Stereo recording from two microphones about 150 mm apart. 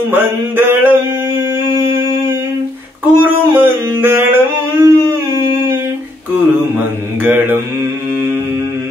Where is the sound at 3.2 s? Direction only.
15° right (ahead or behind).